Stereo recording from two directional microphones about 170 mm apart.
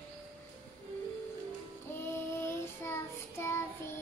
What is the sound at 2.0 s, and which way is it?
Child singing, 15° left (ahead or behind).